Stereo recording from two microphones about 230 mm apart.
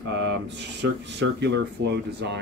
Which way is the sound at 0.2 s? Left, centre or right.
Right.